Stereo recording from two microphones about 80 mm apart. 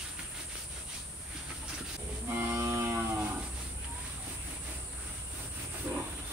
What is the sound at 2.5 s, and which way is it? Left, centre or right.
Cattle, right.